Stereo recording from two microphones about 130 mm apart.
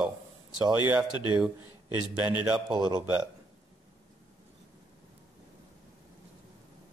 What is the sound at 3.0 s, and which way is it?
Speech, 10° right (ahead or behind).